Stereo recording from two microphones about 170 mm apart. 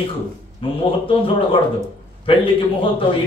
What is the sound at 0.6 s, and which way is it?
A man's voice, 30° left (ahead or behind).